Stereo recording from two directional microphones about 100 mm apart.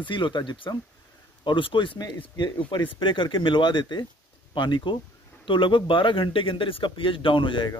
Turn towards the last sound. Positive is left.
turn(degrees=55)  # may be behind; listen again after turning